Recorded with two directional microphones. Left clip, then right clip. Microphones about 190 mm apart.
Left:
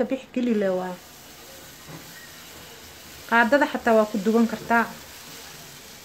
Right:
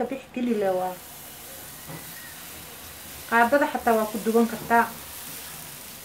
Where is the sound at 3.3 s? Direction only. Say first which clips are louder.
Left 1 dB; 50° left (ahead or behind).